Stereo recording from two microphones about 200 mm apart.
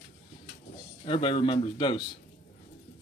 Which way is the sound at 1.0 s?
25° left (ahead or behind).